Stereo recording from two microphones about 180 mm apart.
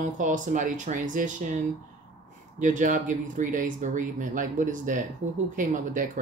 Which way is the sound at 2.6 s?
45° right (ahead or behind).